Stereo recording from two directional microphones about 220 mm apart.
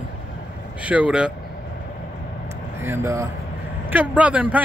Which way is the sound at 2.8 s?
10° right (ahead or behind).